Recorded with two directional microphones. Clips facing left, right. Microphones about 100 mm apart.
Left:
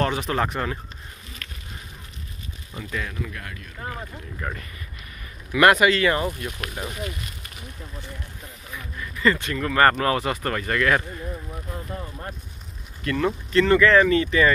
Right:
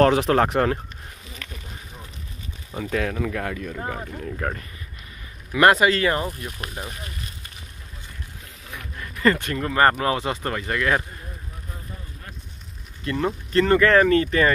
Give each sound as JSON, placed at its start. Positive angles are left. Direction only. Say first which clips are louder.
{"t": 0.0, "sound": "speech", "louder": "right 7 dB", "side_deg": -75}
{"t": 2.8, "sound": "speech", "louder": "right 7 dB", "side_deg": -75}
{"t": 4.4, "sound": "speech", "louder": "right 3 dB", "side_deg": -70}
{"t": 5.5, "sound": "speech", "louder": "even", "side_deg": -35}
{"t": 8.9, "sound": "a sound", "louder": "right 1 dB", "side_deg": -50}
{"t": 9.6, "sound": "speech", "louder": "even", "side_deg": -20}
{"t": 13.0, "sound": "speech", "louder": "left 1 dB", "side_deg": -25}
{"t": 13.5, "sound": "speech", "louder": "even", "side_deg": -40}